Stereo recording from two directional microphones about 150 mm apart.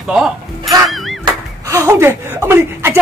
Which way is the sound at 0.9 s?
Centre (ahead or behind).